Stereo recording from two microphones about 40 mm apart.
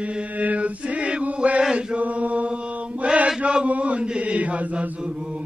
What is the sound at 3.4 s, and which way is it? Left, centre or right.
Chant, right.